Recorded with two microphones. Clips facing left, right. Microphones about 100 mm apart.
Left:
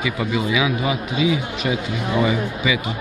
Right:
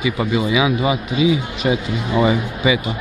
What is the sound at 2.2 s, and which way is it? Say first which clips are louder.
Speech: right 3 dB; 30° right (ahead or behind).